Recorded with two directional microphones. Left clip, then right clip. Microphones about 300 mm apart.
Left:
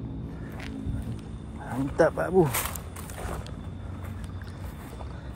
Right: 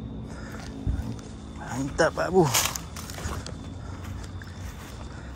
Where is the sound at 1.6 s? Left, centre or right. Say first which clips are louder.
Left 1 dB; centre.